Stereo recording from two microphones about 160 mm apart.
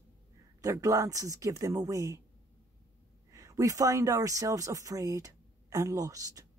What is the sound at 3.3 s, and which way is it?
Speech, 20° right (ahead or behind).